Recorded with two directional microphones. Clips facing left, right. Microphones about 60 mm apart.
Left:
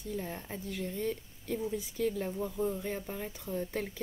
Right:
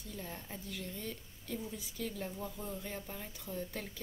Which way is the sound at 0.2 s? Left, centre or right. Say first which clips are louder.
Left 6 dB; left.